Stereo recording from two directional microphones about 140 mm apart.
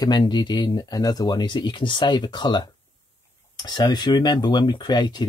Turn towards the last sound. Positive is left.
turn(degrees=30)  # may be behind; listen again after turning